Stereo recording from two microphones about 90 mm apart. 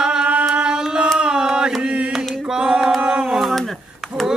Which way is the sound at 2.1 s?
Centre (ahead or behind).